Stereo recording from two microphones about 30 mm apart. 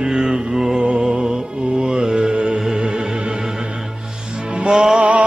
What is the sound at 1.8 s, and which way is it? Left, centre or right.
Mantra, right.